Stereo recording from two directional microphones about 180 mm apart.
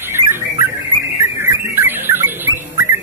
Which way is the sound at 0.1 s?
15° right (ahead or behind).